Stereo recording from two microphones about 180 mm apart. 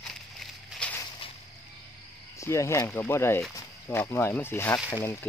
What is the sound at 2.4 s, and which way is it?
Speech, 15° left (ahead or behind).